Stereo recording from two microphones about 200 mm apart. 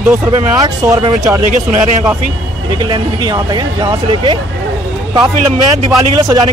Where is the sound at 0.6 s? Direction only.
20° right (ahead or behind).